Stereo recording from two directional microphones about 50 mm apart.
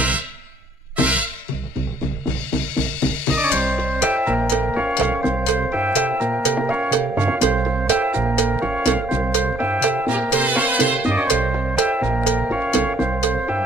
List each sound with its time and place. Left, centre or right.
0.9 s music: right
2.7 s music: left
3.3 s music: right